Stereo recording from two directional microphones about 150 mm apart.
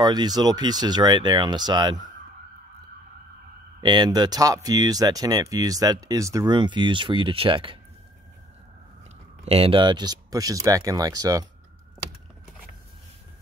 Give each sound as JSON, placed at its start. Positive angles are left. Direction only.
{"t": 0.0, "sound": "speech", "side_deg": -25}
{"t": 3.8, "sound": "speech", "side_deg": -30}
{"t": 9.4, "sound": "speech", "side_deg": -40}